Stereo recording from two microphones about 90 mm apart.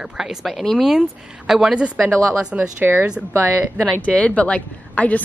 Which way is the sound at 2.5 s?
15° right (ahead or behind).